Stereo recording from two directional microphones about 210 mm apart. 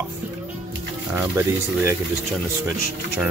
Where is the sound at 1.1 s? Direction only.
10° right (ahead or behind).